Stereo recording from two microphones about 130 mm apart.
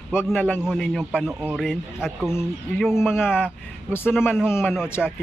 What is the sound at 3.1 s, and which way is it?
A man's voice, 15° left (ahead or behind).